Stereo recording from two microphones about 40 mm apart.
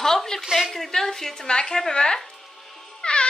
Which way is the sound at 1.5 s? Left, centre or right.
Left.